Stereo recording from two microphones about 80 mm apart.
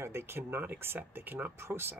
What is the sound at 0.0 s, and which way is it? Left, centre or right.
Speech, right.